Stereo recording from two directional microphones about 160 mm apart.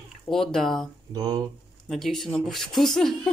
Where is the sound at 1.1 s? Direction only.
25° right (ahead or behind).